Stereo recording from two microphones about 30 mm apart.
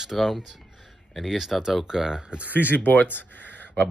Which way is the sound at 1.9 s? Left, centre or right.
Centre.